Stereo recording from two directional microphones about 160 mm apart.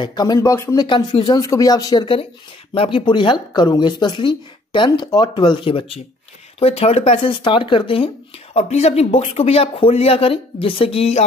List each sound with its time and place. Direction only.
0.0 s speech: 25° left (ahead or behind)
0.8 s speech: 30° left (ahead or behind)